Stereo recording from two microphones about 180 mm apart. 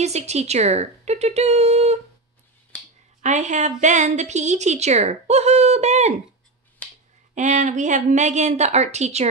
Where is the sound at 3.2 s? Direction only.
40° right (ahead or behind).